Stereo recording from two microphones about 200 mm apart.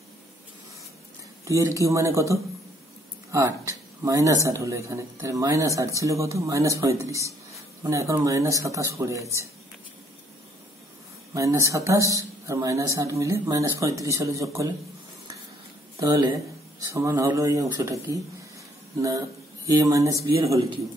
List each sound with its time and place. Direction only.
1.4 s a man's voice: 15° right (ahead or behind)
11.3 s a man's voice: 15° right (ahead or behind)
16.0 s a man's voice: 20° right (ahead or behind)